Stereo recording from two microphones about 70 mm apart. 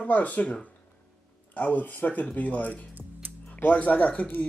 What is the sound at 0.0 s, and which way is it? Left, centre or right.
Speech, left.